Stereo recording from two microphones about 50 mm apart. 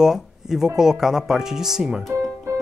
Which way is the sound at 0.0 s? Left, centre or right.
Centre.